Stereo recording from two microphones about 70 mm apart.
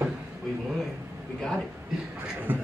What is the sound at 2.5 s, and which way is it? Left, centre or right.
Speech, right.